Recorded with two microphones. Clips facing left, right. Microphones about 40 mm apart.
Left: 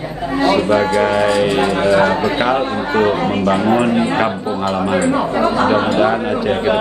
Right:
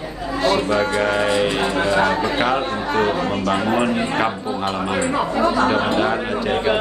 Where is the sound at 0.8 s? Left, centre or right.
Left.